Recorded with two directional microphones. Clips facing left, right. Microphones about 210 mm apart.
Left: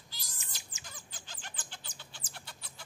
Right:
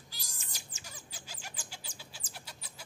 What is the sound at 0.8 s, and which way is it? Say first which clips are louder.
Bird: right 1 dB; 10° right (ahead or behind).